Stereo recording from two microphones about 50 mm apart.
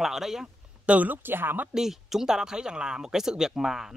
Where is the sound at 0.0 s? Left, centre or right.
Centre.